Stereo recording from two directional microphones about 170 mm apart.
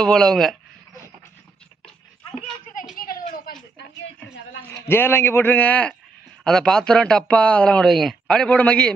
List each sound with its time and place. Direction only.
0.0 s speech: 5° left (ahead or behind)
2.7 s a sound: 55° left (ahead or behind)
4.8 s a man's voice: 15° left (ahead or behind)